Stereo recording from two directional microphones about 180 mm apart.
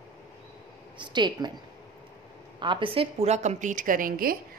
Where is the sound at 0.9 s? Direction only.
25° right (ahead or behind).